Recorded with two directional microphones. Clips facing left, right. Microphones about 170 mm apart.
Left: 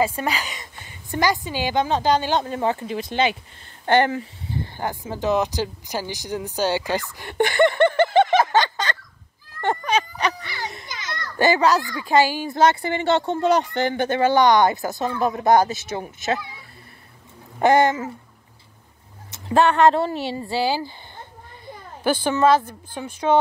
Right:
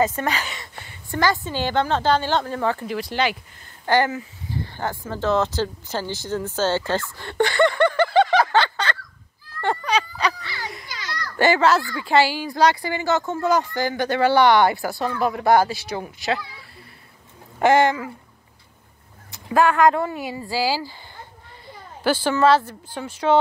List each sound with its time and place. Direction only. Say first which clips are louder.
0.0 s a woman's voice: right 1 dB; 10° left (ahead or behind); by 4.3 s 30° left (ahead or behind)
4.7 s speech: right 1 dB; 15° left (ahead or behind)
10.4 s children playing: left 1 dB; 20° left (ahead or behind)
12.4 s speech: left 1 dB; 25° left (ahead or behind)
17.6 s speech: even; 25° left (ahead or behind)
19.3 s speech: left 1 dB; 25° left (ahead or behind)
22.0 s a woman's voice: even; 15° left (ahead or behind)